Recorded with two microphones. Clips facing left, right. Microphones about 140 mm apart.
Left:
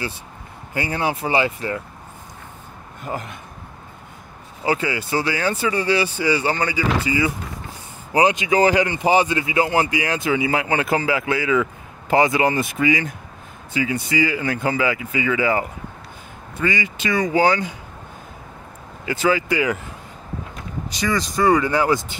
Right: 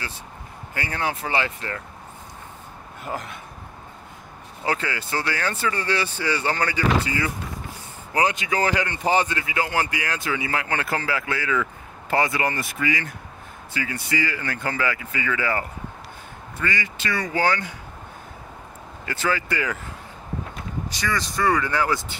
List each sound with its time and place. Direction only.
0.7 s speech: 15° left (ahead or behind)
3.0 s speech: centre (ahead or behind)
4.6 s speech: 10° left (ahead or behind)
8.1 s speech: 20° left (ahead or behind)
9.4 s speech: 20° left (ahead or behind)
19.0 s speech: 15° left (ahead or behind)
20.9 s speech: 15° left (ahead or behind)